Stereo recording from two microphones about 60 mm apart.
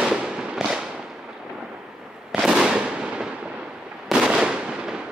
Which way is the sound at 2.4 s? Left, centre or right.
Centre.